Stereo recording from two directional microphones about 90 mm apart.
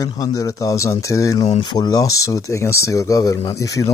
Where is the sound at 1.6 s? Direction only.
55° left (ahead or behind).